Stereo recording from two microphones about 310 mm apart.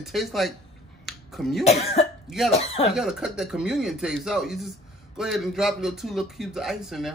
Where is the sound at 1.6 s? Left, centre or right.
Centre.